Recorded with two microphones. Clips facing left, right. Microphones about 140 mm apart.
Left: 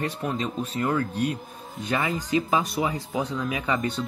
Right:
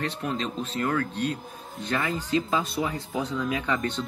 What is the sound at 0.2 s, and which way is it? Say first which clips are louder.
Speech: left 2 dB; 5° left (ahead or behind).